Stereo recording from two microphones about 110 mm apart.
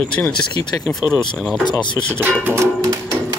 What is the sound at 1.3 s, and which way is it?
Speech, 5° left (ahead or behind).